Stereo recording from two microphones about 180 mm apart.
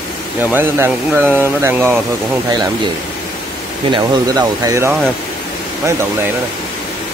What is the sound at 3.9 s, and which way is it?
Speech, 20° right (ahead or behind).